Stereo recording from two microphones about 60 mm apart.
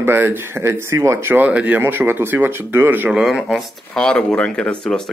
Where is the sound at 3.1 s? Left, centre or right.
Centre.